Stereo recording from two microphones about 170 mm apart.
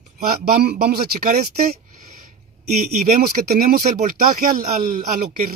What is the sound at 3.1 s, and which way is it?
Speech, 60° right (ahead or behind).